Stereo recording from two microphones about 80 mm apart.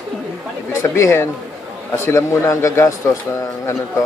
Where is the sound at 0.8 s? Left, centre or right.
Left.